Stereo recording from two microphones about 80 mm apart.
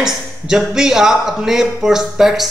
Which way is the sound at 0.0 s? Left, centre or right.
Centre.